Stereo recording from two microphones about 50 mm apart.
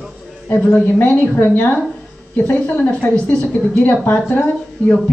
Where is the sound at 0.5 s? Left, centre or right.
Left.